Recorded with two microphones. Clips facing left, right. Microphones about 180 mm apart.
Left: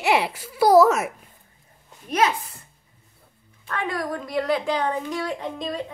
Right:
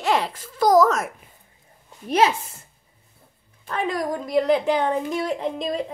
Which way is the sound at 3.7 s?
25° right (ahead or behind).